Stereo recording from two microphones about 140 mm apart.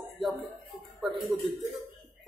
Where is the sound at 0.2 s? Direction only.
Centre (ahead or behind).